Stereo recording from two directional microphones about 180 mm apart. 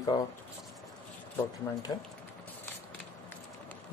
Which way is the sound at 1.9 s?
20° left (ahead or behind).